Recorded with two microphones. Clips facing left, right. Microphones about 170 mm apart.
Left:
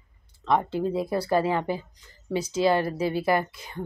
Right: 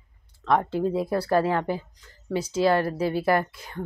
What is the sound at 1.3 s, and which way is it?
A woman's voice, 15° left (ahead or behind).